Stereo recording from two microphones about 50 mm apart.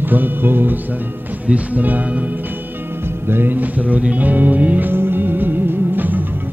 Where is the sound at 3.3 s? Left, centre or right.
Right.